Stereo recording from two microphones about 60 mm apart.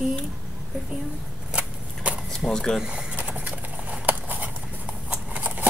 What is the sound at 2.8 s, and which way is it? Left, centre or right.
Patter, centre.